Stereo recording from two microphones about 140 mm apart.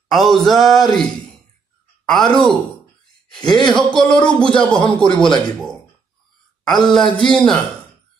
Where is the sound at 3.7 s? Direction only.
5° left (ahead or behind).